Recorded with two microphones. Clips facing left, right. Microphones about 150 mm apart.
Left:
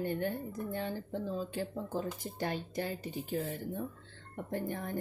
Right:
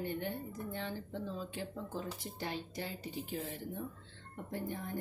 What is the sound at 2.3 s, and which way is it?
A woman's voice, 50° left (ahead or behind).